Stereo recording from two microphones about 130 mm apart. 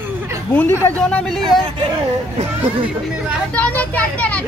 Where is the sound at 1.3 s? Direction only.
Centre (ahead or behind).